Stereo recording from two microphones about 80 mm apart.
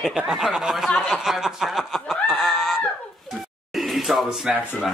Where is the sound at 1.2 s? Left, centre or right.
Centre.